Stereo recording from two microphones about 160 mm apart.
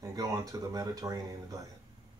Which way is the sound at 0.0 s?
25° right (ahead or behind).